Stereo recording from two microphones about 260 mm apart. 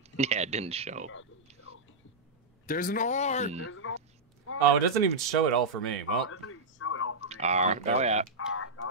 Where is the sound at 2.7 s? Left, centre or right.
Left.